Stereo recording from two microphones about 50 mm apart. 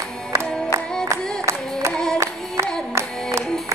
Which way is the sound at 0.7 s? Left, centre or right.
Right.